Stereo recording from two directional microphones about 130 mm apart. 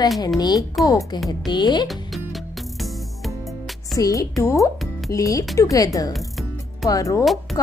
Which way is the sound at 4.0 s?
25° left (ahead or behind).